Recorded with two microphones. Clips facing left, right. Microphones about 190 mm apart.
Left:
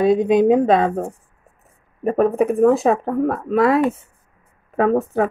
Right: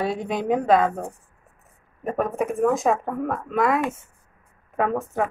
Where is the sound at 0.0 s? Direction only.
20° left (ahead or behind).